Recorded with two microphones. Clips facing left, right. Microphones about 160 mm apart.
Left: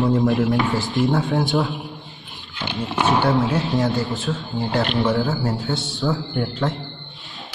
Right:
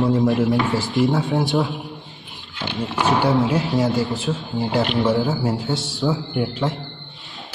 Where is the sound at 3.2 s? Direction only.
Centre (ahead or behind).